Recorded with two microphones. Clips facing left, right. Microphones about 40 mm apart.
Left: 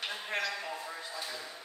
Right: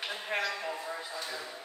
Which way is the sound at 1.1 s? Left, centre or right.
Centre.